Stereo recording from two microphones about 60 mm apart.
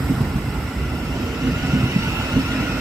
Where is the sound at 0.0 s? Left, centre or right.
Centre.